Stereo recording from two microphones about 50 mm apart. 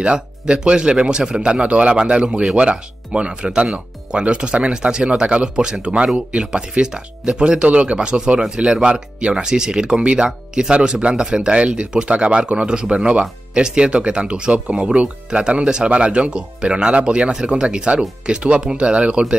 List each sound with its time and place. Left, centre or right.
0.0 s speech: right